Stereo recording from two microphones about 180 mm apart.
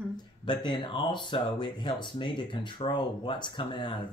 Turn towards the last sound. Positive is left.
turn(degrees=25)  # may be behind; listen again after turning